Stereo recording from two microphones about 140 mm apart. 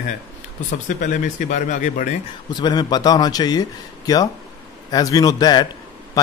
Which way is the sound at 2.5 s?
30° left (ahead or behind).